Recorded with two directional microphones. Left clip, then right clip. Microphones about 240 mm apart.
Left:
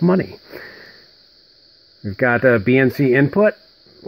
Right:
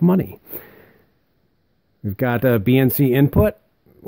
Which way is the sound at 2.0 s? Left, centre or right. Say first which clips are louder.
Left 4 dB; right.